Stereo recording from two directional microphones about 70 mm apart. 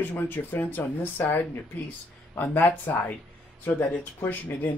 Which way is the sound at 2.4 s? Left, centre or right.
Left.